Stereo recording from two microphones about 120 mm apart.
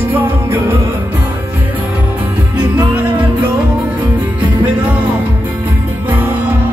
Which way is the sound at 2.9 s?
15° right (ahead or behind).